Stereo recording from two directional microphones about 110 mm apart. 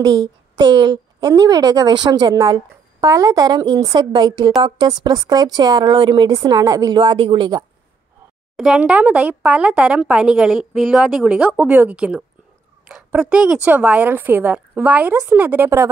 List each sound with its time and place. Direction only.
0.0 s a woman's voice: 40° right (ahead or behind)
7.0 s speech: 50° right (ahead or behind)
8.5 s a woman's voice: 10° right (ahead or behind)